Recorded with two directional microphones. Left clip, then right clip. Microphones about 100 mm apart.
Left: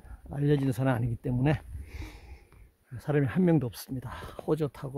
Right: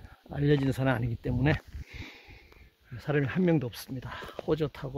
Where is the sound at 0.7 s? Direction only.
40° left (ahead or behind).